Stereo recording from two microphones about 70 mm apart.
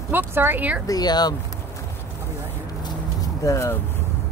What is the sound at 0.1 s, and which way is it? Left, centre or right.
Speech, right.